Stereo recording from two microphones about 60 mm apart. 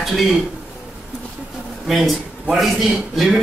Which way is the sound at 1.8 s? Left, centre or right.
Centre.